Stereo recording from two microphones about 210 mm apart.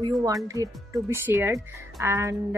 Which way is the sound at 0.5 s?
15° right (ahead or behind).